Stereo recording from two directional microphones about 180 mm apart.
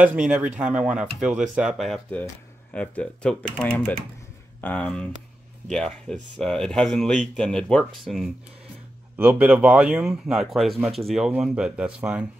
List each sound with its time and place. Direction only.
0.0 s speech: 10° right (ahead or behind)